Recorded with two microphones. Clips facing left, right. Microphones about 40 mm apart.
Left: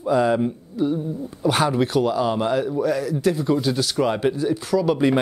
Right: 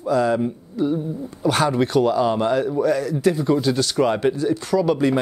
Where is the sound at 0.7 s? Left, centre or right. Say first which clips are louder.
Right 2 dB; centre.